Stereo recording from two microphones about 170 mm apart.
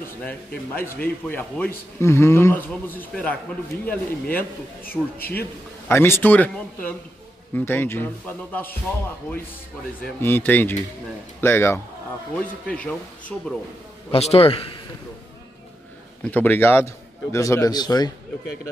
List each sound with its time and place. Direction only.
0.7 s a man's voice: 10° left (ahead or behind)
5.9 s a man's voice: 15° left (ahead or behind)
10.0 s a man's voice: 10° left (ahead or behind)
14.1 s a man's voice: 35° left (ahead or behind)
16.3 s a man's voice: 10° left (ahead or behind)